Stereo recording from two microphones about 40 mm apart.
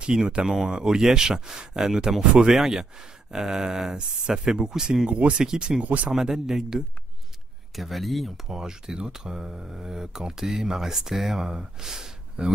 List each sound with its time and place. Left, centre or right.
0.0 s speech: right
5.1 s speech: right
5.4 s speech: centre
7.7 s speech: centre
8.5 s speech: centre